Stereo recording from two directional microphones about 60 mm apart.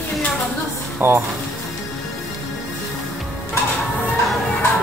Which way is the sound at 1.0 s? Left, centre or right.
Right.